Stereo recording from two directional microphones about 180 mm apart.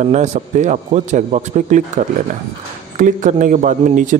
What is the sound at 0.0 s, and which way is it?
A man's voice, 40° right (ahead or behind).